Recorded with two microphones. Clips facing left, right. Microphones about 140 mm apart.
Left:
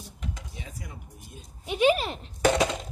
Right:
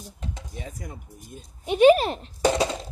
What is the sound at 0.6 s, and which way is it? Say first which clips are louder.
Speech: right 5 dB; 45° right (ahead or behind).